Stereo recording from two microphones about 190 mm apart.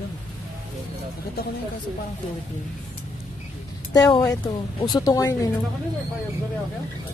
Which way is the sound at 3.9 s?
20° left (ahead or behind).